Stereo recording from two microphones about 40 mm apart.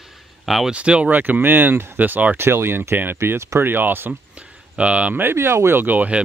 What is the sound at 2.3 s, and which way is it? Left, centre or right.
Speech, right.